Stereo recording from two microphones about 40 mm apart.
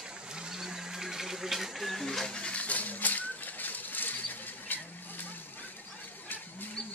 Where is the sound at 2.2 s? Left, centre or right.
Left.